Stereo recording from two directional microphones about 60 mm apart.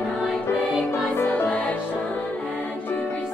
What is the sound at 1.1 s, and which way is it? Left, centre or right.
Music, left.